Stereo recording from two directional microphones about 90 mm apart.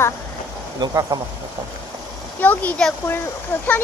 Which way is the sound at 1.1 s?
30° right (ahead or behind).